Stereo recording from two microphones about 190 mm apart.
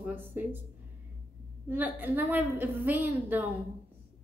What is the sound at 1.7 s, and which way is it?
A woman's voice, 10° right (ahead or behind).